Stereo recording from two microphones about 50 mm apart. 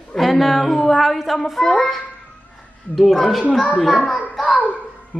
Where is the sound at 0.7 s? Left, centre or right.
Centre.